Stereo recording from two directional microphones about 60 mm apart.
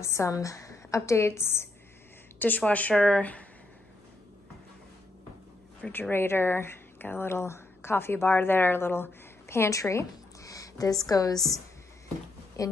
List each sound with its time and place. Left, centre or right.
0.0 s a woman's voice: left
2.3 s a sound: left
2.6 s speech: left
5.9 s speech: left
11.1 s a woman's voice: left
12.6 s a woman's voice: left